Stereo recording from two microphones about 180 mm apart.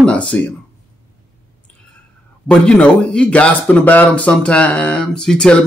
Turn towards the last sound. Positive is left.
turn(degrees=5)  # may be behind; listen again after turning